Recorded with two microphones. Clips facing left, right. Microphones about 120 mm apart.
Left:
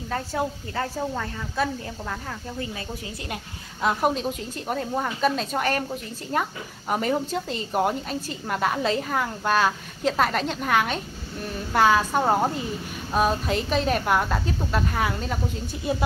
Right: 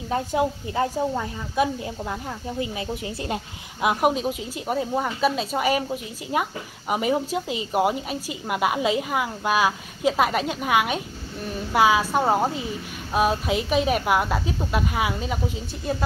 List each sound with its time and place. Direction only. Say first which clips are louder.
0.1 s a woman's voice: right 4 dB; 15° right (ahead or behind)
15.9 s speech: left 1 dB; 5° left (ahead or behind)